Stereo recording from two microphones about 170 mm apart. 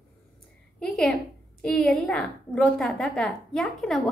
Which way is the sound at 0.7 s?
5° left (ahead or behind).